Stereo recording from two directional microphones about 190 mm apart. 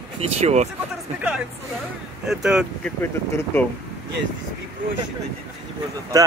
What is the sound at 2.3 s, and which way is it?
Speech, centre (ahead or behind).